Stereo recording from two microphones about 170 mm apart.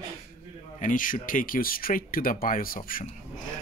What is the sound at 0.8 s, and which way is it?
Speech, 50° left (ahead or behind).